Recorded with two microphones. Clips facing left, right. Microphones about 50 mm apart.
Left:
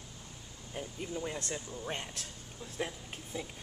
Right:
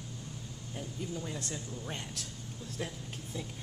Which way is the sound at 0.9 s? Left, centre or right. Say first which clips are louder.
Left 1 dB; left.